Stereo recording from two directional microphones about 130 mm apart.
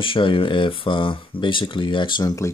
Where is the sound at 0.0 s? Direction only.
40° left (ahead or behind).